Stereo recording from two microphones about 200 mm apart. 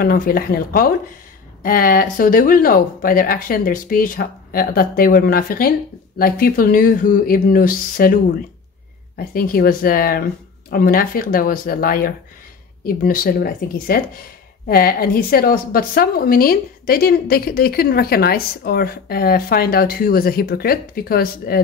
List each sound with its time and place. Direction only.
0.0 s a woman's voice: 45° left (ahead or behind)